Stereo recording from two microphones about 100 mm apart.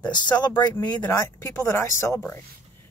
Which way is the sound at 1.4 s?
25° left (ahead or behind).